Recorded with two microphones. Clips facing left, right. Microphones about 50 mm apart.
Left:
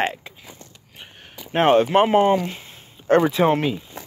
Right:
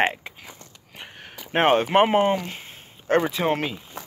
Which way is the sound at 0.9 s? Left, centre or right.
Right.